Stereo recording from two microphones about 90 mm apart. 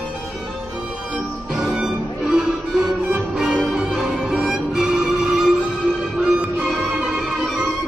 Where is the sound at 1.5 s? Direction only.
5° right (ahead or behind).